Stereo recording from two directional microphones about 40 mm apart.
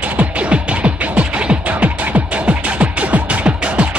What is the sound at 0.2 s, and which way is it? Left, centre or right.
Music, right.